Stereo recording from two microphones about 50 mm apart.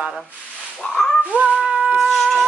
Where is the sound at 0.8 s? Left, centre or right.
Centre.